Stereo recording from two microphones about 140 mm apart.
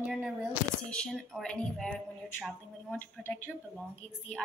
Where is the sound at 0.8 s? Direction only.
5° left (ahead or behind).